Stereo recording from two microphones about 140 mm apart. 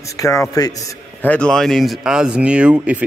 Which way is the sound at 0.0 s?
25° left (ahead or behind).